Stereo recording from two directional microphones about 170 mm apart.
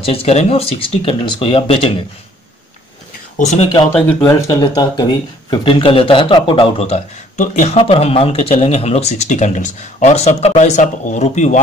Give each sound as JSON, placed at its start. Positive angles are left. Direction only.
{"t": 0.0, "sound": "speech", "side_deg": 35}
{"t": 3.3, "sound": "speech", "side_deg": 45}
{"t": 4.0, "sound": "speech", "side_deg": 15}